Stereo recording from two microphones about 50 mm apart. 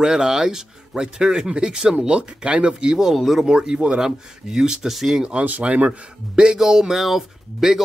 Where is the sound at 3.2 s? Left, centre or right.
Centre.